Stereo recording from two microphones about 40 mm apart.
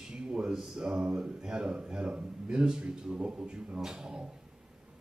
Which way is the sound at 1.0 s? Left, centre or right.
Right.